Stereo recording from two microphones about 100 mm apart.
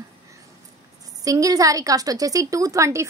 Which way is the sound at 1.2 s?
35° right (ahead or behind).